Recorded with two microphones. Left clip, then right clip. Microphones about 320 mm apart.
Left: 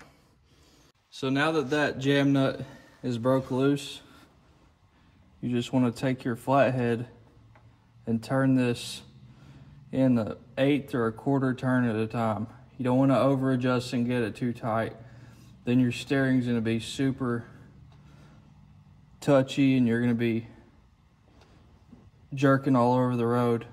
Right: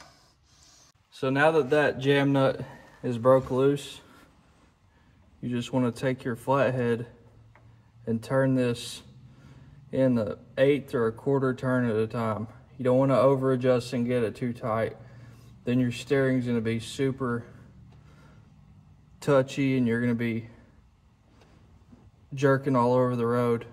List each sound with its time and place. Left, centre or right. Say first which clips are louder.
1.1 s speech: right 4 dB; centre
5.4 s speech: left 1 dB; centre
19.2 s speech: left 1 dB; centre
22.4 s speech: even; centre